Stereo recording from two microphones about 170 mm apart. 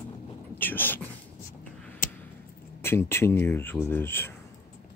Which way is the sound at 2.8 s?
15° left (ahead or behind).